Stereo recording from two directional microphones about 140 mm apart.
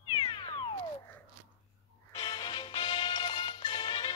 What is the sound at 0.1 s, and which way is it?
Cat, 35° left (ahead or behind).